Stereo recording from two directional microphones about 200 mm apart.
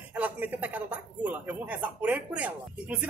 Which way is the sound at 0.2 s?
10° right (ahead or behind).